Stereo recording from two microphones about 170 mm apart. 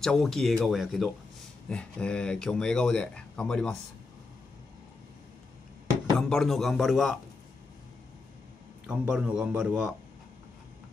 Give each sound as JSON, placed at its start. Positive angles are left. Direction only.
{"t": 0.0, "sound": "speech", "side_deg": 5}
{"t": 6.1, "sound": "speech", "side_deg": 5}
{"t": 8.8, "sound": "a man's voice", "side_deg": -5}